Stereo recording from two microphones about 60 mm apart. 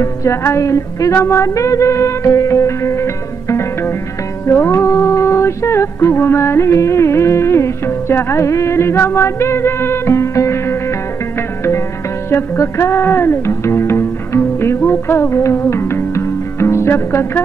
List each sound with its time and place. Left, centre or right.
0.0 s music: left
12.3 s music: left